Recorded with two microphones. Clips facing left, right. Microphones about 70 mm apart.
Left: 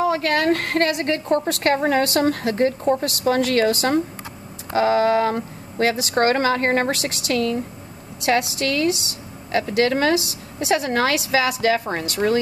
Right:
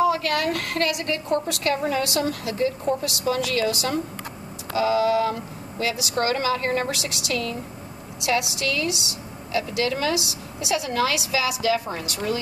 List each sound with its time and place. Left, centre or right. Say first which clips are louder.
0.0 s a woman's voice: left 2 dB; left